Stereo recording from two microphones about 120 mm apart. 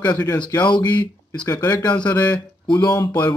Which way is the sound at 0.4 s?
35° left (ahead or behind).